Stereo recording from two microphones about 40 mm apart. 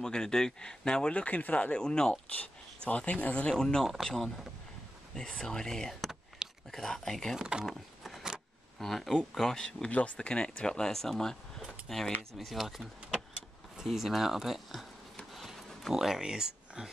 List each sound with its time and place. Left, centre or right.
0.0 s speech: centre; by 1.8 s left
1.8 s speech: left
3.4 s speech: centre
5.4 s speech: centre
7.3 s speech: centre
7.6 s a sound: centre
8.7 s speech: centre
9.8 s speech: left; by 14.9 s centre
15.3 s pig: centre
15.9 s speech: centre